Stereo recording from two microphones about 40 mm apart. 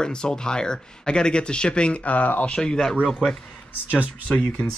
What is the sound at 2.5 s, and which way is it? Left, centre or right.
Speech, centre.